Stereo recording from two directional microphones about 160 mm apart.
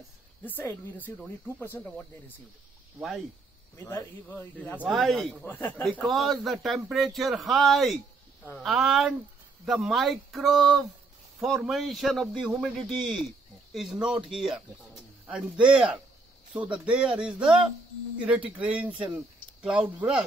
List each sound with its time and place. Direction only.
0.5 s speech: 10° left (ahead or behind)
3.0 s a man's voice: centre (ahead or behind)
3.7 s speech: 15° left (ahead or behind)
4.7 s a man's voice: centre (ahead or behind)
15.6 s speech: 5° right (ahead or behind)